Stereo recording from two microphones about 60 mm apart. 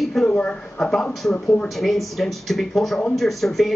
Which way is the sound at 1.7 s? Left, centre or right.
Centre.